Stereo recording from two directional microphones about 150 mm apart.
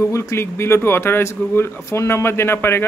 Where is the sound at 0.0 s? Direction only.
20° left (ahead or behind).